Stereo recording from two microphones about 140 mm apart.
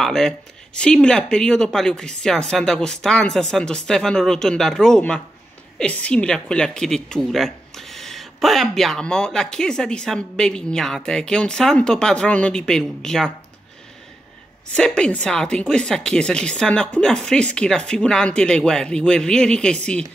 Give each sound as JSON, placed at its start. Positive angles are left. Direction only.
{"t": 0.0, "sound": "a woman's voice", "side_deg": 5}
{"t": 14.8, "sound": "a woman's voice", "side_deg": 5}